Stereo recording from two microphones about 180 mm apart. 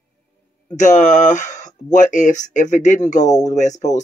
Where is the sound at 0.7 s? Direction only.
40° left (ahead or behind).